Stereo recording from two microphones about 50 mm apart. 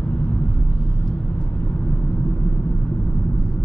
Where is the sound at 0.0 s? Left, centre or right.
Centre.